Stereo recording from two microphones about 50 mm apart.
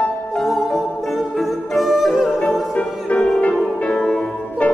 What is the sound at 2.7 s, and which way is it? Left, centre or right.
Music, left.